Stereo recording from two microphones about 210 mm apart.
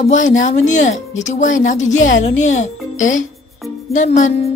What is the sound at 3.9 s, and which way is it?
Speech, 35° left (ahead or behind).